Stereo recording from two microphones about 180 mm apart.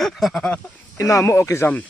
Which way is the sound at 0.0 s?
Centre (ahead or behind).